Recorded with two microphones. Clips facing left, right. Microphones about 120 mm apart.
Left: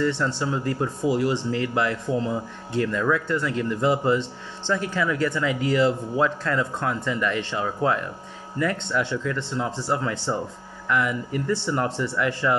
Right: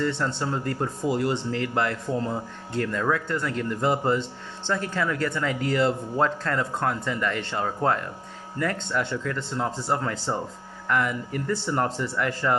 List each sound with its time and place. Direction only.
0.0 s speech: 45° right (ahead or behind)